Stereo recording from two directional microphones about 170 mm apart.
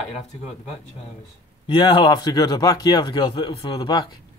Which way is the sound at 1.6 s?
25° left (ahead or behind).